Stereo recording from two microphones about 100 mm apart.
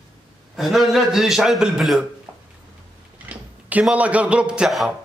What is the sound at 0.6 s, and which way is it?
A man's voice, 5° right (ahead or behind).